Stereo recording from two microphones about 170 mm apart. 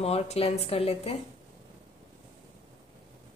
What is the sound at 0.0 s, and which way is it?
A woman's voice, 35° left (ahead or behind).